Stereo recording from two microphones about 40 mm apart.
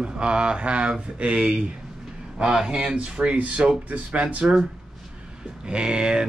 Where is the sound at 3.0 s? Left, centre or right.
Right.